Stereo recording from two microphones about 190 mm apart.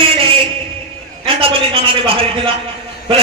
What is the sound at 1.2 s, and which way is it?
A man's voice, 30° right (ahead or behind).